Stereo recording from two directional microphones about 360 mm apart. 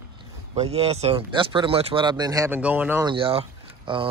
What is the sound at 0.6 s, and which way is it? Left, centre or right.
A man's voice, centre.